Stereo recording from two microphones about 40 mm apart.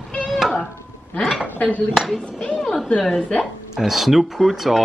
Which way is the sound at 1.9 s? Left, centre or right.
Centre.